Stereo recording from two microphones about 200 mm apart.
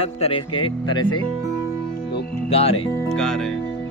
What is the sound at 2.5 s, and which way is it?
Speech, 30° left (ahead or behind).